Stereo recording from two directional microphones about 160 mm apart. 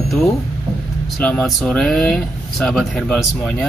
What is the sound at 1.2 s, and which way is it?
Speech, 5° left (ahead or behind).